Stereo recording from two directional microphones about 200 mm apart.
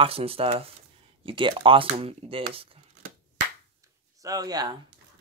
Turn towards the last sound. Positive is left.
turn(degrees=-20)  # may be behind; listen again after turning